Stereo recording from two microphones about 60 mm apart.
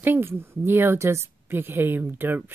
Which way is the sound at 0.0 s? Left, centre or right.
Right.